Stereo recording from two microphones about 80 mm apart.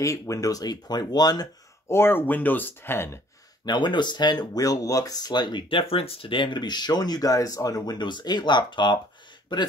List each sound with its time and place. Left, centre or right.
0.0 s speech: left
1.9 s speech: left
3.6 s speech: left
4.6 s speech: left
9.5 s speech: left